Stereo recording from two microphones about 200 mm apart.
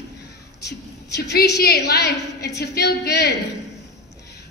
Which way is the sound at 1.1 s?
55° left (ahead or behind).